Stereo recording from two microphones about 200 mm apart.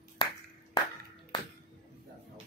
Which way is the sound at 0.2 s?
25° left (ahead or behind).